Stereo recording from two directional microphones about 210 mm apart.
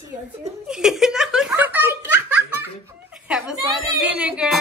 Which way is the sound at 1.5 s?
10° right (ahead or behind).